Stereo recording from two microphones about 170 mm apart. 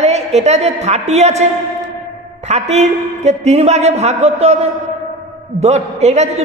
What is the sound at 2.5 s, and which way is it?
A woman's voice, 40° right (ahead or behind).